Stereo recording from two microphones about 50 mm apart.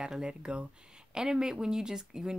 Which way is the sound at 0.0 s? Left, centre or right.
Centre.